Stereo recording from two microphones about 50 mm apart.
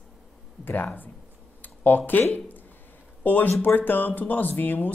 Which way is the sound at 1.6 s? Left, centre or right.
Left.